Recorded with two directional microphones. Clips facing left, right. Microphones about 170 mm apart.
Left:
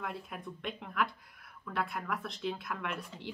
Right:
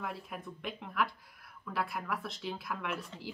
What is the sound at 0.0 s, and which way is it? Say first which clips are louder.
Speech: even; centre (ahead or behind).